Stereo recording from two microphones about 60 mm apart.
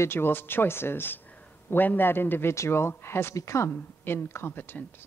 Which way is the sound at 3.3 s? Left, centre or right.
Left.